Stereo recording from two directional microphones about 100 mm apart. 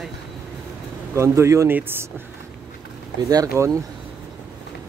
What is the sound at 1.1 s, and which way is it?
Speech, 30° right (ahead or behind).